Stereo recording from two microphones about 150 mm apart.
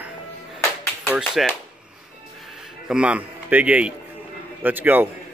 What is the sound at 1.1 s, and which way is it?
Speech, 5° right (ahead or behind).